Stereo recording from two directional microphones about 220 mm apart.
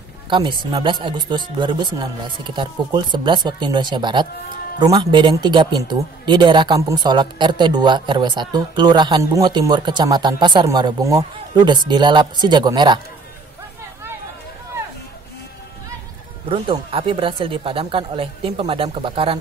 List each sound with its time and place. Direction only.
0.3 s speech: 20° right (ahead or behind)
16.4 s speech: 25° right (ahead or behind)